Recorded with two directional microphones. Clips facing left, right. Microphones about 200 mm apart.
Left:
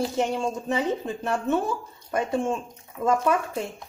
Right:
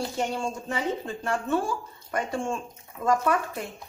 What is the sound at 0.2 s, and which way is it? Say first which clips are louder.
Speech: left 4 dB; 20° left (ahead or behind).